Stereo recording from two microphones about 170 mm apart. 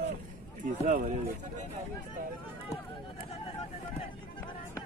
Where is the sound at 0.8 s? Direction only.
50° right (ahead or behind).